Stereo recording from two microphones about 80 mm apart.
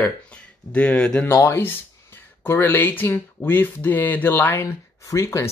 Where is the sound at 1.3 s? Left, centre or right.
Left.